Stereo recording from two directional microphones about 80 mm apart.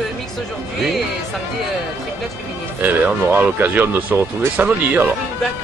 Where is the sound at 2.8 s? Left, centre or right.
Right.